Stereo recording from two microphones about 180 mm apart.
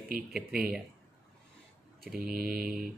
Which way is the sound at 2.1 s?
55° right (ahead or behind).